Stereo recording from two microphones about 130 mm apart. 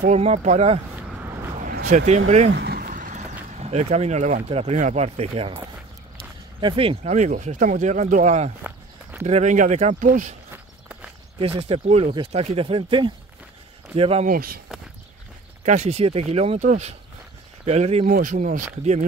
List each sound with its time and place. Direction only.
0.0 s speech: 60° right (ahead or behind)
0.9 s vehicle: 15° right (ahead or behind)
1.6 s vehicle: 75° right (ahead or behind)
3.4 s speech: 60° right (ahead or behind)
6.6 s speech: 40° right (ahead or behind); by 10.3 s 85° right
11.6 s speech: 55° right (ahead or behind)
14.2 s speech: 90° right
15.6 s speech: 60° right (ahead or behind)
17.6 s speech: 55° right (ahead or behind)
18.1 s speech: 85° right